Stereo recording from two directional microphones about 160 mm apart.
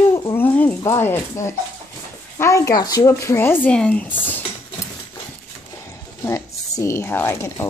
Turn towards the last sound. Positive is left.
turn(degrees=15)  # may be behind; listen again after turning